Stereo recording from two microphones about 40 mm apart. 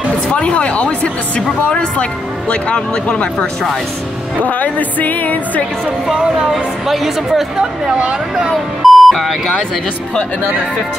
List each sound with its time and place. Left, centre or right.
0.3 s speech: left
4.4 s speech: left
5.9 s a woman's voice: centre
8.0 s speech: right
8.8 s beep: centre